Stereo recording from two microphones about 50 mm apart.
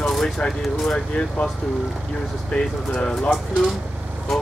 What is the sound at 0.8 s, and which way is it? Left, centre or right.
Speech, left.